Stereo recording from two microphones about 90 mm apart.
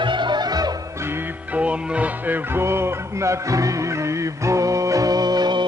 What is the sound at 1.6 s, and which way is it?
Music, 15° right (ahead or behind).